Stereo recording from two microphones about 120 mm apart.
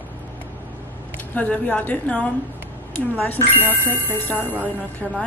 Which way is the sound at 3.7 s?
15° left (ahead or behind).